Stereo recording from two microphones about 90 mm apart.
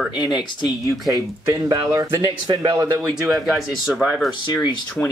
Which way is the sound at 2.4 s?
55° right (ahead or behind).